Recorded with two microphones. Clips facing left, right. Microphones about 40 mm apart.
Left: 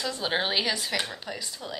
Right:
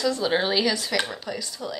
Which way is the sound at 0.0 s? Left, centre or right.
Left.